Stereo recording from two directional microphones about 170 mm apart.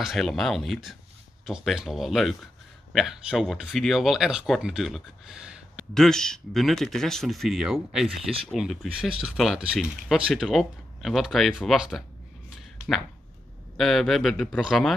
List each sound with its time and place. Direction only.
0.0 s speech: centre (ahead or behind)
12.4 s a sound: centre (ahead or behind)
13.7 s speech: centre (ahead or behind)